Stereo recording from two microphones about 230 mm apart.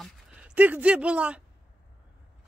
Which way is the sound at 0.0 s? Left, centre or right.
Centre.